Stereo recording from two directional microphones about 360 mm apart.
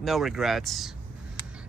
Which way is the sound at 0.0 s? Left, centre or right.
Centre.